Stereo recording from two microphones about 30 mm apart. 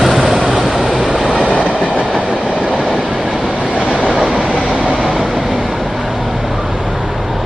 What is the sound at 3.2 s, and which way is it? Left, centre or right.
Train, centre.